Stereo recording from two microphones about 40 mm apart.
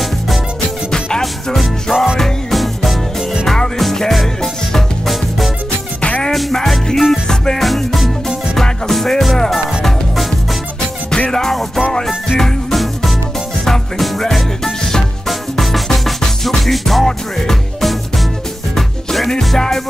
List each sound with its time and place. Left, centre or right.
1.2 s music: centre
11.1 s music: left
13.7 s music: centre